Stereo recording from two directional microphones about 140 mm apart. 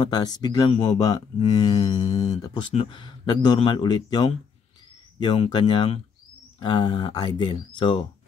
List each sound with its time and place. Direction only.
0.0 s speech: 30° left (ahead or behind)
2.1 s speech: 55° left (ahead or behind)
2.4 s speech: 30° left (ahead or behind)